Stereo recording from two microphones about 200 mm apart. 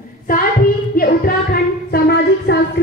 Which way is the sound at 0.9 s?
50° left (ahead or behind).